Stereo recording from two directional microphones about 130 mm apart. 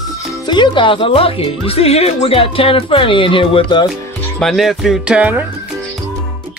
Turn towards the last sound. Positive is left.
turn(degrees=-10)  # may be behind; listen again after turning